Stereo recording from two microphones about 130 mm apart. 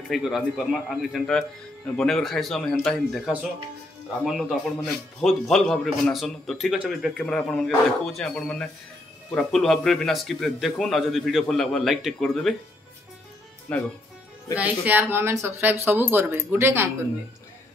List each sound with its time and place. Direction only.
0.1 s speech: centre (ahead or behind)
13.7 s speech: 10° left (ahead or behind)
14.5 s speech: 10° right (ahead or behind)